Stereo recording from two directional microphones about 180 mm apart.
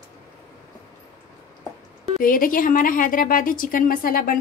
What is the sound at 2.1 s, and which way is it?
A woman's voice, 50° left (ahead or behind).